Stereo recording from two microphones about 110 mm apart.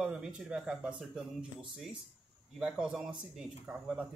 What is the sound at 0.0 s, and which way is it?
Speech, 5° right (ahead or behind).